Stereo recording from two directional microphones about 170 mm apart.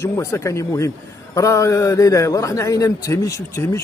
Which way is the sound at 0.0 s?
15° left (ahead or behind).